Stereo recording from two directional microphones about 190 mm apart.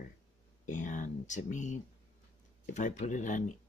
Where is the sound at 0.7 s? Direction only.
40° left (ahead or behind).